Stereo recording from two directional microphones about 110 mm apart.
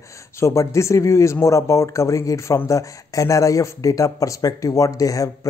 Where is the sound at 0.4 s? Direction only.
25° left (ahead or behind).